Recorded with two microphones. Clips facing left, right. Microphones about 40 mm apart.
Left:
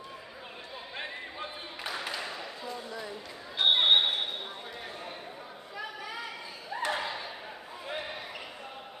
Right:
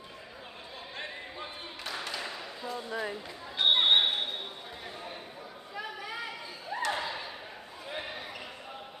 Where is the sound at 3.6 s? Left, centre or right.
Centre.